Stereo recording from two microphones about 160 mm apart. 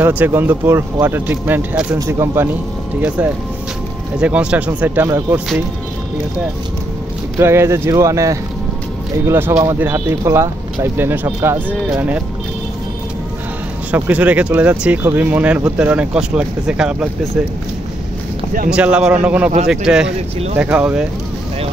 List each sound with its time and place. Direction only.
0.0 s speech: 10° right (ahead or behind)
4.2 s speech: 5° right (ahead or behind)
7.3 s speech: 15° right (ahead or behind)
13.9 s speech: 10° right (ahead or behind)
18.7 s speech: 5° right (ahead or behind)